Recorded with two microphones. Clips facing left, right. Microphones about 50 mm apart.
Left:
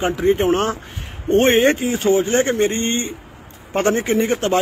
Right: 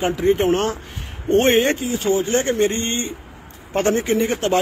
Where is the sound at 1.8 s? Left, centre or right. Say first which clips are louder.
Left 3 dB; left.